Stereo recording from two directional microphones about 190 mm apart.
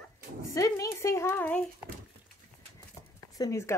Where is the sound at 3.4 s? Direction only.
15° left (ahead or behind).